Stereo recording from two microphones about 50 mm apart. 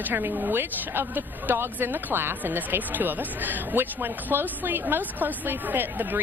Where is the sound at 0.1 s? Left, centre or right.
Right.